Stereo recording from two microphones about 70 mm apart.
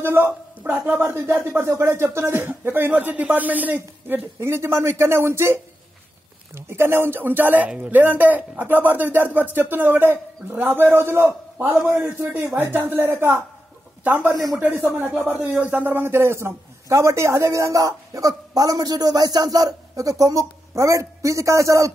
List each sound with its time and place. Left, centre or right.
0.0 s speech: right
4.4 s speech: right
14.3 s speech: right
14.9 s a man's voice: right